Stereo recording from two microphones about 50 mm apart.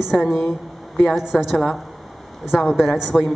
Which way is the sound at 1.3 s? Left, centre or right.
Centre.